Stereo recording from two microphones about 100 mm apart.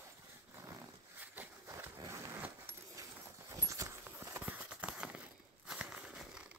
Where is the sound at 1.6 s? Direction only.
30° right (ahead or behind).